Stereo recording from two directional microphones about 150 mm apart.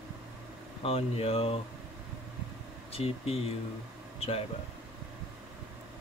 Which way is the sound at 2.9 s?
40° left (ahead or behind).